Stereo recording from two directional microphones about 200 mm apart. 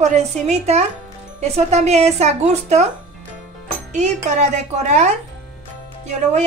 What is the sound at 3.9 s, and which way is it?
A woman's voice, 35° right (ahead or behind).